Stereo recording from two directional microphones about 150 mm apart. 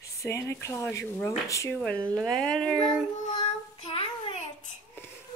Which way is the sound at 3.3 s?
35° left (ahead or behind).